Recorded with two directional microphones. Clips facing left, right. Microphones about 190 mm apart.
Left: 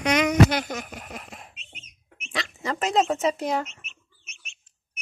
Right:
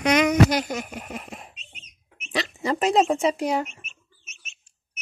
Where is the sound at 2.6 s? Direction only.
15° right (ahead or behind).